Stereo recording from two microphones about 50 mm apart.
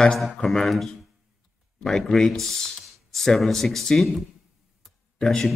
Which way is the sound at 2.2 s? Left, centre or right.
Centre.